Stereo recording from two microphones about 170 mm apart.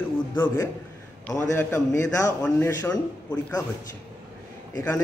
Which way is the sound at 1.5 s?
15° left (ahead or behind).